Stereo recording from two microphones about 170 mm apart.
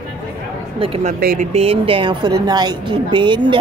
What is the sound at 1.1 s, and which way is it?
Speech, 55° right (ahead or behind).